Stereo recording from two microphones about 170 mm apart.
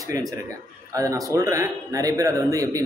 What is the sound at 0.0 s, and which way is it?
A man's voice, 20° right (ahead or behind).